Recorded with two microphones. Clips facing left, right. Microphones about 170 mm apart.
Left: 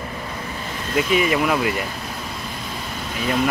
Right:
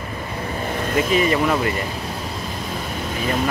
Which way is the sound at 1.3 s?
5° left (ahead or behind).